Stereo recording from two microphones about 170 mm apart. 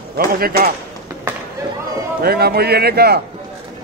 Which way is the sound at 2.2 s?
65° right (ahead or behind).